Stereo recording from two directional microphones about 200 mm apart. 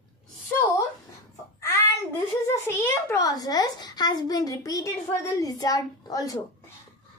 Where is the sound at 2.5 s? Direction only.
10° left (ahead or behind).